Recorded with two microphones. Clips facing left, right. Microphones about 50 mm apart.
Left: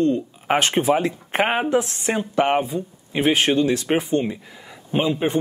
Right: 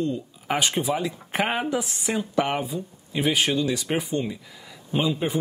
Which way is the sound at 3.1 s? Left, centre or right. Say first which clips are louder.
Left 4 dB; left.